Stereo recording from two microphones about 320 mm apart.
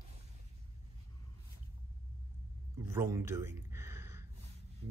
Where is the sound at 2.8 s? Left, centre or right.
Centre.